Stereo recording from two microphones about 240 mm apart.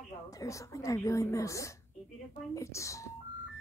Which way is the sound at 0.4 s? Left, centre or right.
Centre.